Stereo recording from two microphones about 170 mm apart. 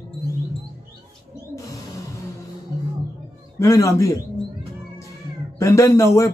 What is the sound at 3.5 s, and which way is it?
Speech, 20° left (ahead or behind).